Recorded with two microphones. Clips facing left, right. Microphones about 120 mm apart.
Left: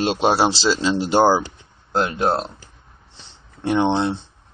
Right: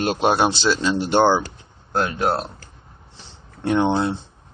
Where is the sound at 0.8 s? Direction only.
10° left (ahead or behind).